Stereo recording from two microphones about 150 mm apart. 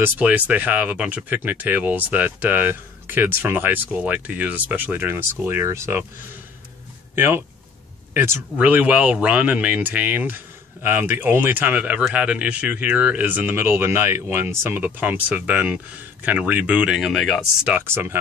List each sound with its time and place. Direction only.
0.0 s speech: 10° right (ahead or behind)
7.2 s speech: 15° right (ahead or behind)
17.7 s speech: 15° right (ahead or behind)